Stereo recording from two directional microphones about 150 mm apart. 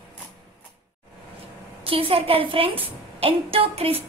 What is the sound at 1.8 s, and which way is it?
A woman's voice, 40° right (ahead or behind).